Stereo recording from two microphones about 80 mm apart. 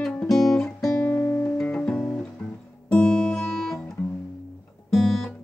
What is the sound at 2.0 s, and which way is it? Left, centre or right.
Music, left.